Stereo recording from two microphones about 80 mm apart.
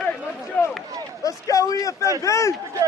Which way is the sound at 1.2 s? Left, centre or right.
Left.